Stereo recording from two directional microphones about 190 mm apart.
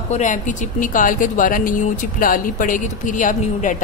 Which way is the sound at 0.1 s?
40° left (ahead or behind).